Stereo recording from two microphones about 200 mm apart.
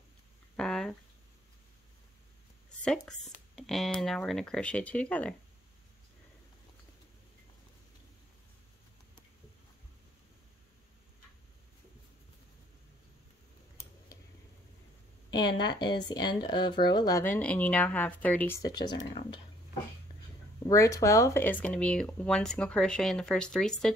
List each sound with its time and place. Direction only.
0.6 s a sound: centre (ahead or behind)
3.1 s speech: centre (ahead or behind)
15.6 s speech: 20° left (ahead or behind)
17.2 s speech: 5° left (ahead or behind); by 19.4 s 25° left (ahead or behind)
20.6 s speech: 15° left (ahead or behind)